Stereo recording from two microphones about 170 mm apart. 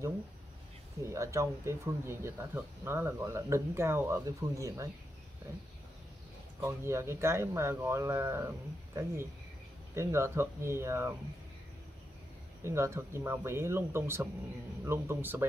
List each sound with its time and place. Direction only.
1.0 s speech: 15° right (ahead or behind)
6.6 s speech: 15° right (ahead or behind)
12.6 s speech: 15° right (ahead or behind)